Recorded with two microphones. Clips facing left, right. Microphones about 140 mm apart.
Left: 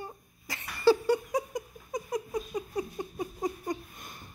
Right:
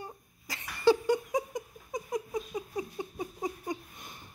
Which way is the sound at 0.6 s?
20° right (ahead or behind).